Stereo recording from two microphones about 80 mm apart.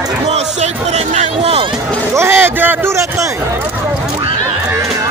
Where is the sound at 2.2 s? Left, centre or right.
Right.